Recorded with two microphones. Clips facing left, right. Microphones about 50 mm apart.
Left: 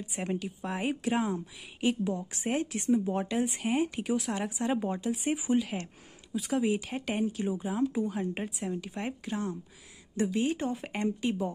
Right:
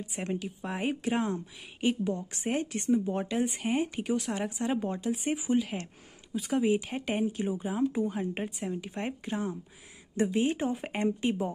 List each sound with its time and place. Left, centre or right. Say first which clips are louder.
0.1 s speech: left 1 dB; centre
10.1 s speech: right 1 dB; centre